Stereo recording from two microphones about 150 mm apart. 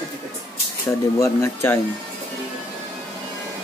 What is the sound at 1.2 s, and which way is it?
Speech, 15° left (ahead or behind).